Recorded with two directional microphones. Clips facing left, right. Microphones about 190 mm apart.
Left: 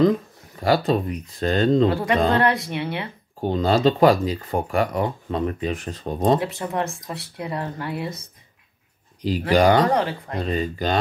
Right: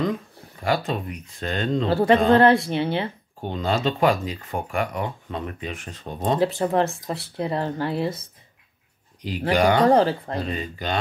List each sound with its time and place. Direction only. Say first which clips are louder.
0.6 s speech: left 5 dB; 35° left (ahead or behind)
1.9 s speech: right 3 dB; 30° right (ahead or behind)
3.3 s speech: left 5 dB; 35° left (ahead or behind)
6.4 s speech: right 5 dB; 30° right (ahead or behind)
9.5 s speech: left 2 dB; 35° left (ahead or behind)
9.8 s speech: right 4 dB; 30° right (ahead or behind)
10.5 s speech: left 5 dB; 40° left (ahead or behind)